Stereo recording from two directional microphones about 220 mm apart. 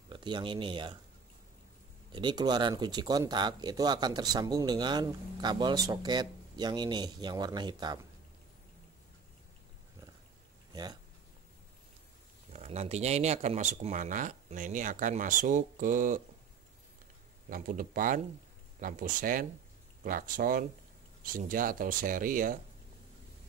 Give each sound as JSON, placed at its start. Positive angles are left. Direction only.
{"t": 0.1, "sound": "speech", "side_deg": -20}
{"t": 2.1, "sound": "speech", "side_deg": -20}
{"t": 10.7, "sound": "a sound", "side_deg": -20}
{"t": 12.5, "sound": "speech", "side_deg": -30}
{"t": 17.5, "sound": "speech", "side_deg": -40}